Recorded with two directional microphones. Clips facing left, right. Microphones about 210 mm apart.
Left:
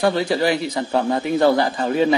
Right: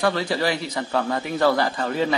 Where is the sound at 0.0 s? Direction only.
20° left (ahead or behind).